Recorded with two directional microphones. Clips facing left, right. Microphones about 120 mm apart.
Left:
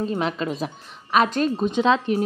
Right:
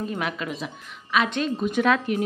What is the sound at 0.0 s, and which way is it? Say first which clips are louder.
Speech: left 4 dB; 30° left (ahead or behind).